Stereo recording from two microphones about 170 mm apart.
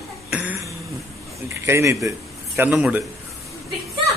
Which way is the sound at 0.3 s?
15° right (ahead or behind).